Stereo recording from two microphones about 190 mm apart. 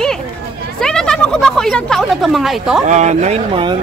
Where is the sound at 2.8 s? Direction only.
40° right (ahead or behind).